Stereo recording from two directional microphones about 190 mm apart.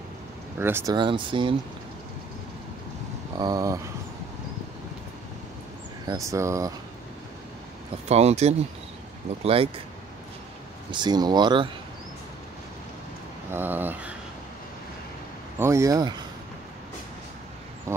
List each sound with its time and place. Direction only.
0.6 s speech: 10° right (ahead or behind)
0.9 s speech: 25° right (ahead or behind)
3.3 s speech: 20° right (ahead or behind)
6.0 s speech: 15° right (ahead or behind)
8.1 s speech: 35° right (ahead or behind)
10.9 s speech: 20° right (ahead or behind)
13.5 s speech: 10° right (ahead or behind)
15.6 s speech: 15° right (ahead or behind)
17.9 s speech: 15° right (ahead or behind)